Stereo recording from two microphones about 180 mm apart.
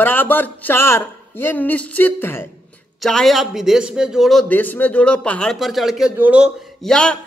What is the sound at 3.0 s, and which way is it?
A man's voice, centre (ahead or behind).